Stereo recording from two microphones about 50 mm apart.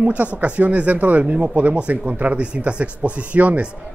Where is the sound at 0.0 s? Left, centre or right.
Right.